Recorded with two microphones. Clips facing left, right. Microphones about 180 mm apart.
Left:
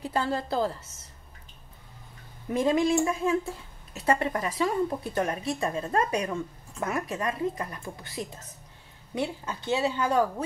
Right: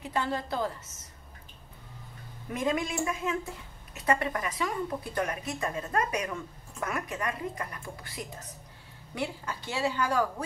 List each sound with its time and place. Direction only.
0.0 s a woman's voice: 30° left (ahead or behind)
2.5 s speech: 30° left (ahead or behind)